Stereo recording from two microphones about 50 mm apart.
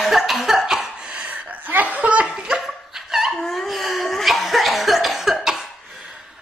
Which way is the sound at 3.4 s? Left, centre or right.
Centre.